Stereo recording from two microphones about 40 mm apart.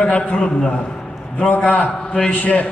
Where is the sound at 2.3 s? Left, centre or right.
Left.